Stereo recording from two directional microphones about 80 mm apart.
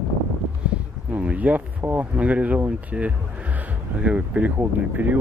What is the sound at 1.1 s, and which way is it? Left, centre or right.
Speech, centre.